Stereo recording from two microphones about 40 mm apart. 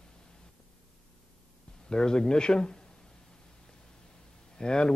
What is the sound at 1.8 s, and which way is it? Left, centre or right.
A man's voice, centre.